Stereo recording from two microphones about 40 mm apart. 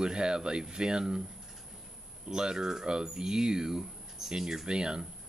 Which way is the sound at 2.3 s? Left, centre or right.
Centre.